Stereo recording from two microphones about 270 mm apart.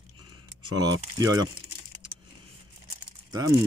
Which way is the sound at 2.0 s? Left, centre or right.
Centre.